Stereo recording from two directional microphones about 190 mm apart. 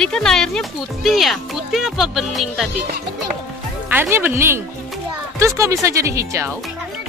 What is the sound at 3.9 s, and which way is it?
Speech, 10° right (ahead or behind).